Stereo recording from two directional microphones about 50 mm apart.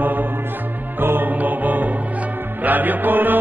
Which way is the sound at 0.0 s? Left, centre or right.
Right.